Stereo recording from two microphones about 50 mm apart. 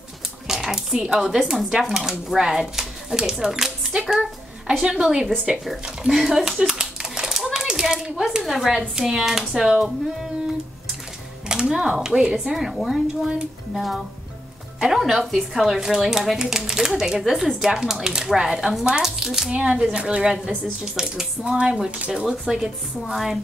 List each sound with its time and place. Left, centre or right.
0.5 s a sound: centre
1.5 s speech: centre
5.7 s a sound: centre
8.5 s speech: centre
11.7 s speech: centre
19.5 s speech: right; by 23.4 s centre